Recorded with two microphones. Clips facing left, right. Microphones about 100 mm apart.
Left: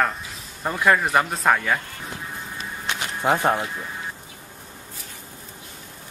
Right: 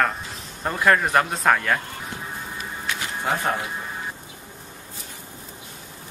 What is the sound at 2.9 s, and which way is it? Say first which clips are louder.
Music: left 4 dB; 20° left (ahead or behind).